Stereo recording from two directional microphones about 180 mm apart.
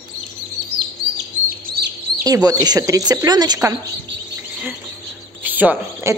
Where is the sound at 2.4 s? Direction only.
20° right (ahead or behind).